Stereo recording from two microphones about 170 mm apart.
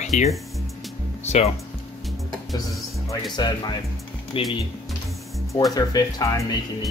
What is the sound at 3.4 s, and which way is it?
Speech, 25° left (ahead or behind).